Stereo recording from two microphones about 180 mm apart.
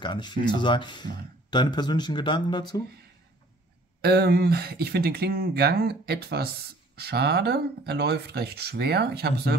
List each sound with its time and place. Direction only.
0.0 s speech: 25° left (ahead or behind)
4.0 s speech: 60° right (ahead or behind)